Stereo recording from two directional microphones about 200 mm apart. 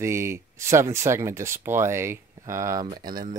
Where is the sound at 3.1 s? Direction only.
45° right (ahead or behind).